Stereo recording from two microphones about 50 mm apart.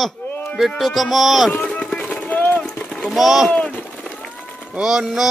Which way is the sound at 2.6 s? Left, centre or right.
Centre.